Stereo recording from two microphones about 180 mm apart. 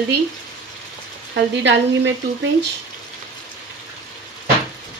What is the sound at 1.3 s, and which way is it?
Speech, 75° right (ahead or behind).